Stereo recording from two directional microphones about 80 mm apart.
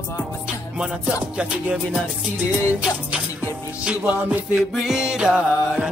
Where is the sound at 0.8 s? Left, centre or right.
Centre.